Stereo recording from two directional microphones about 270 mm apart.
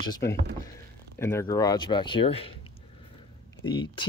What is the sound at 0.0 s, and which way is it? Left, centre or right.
Speech, centre.